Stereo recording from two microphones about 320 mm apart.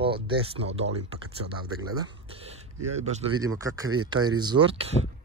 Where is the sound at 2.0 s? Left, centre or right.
Centre.